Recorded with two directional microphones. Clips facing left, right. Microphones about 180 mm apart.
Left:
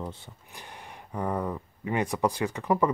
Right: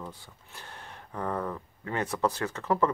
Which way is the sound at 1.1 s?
10° left (ahead or behind).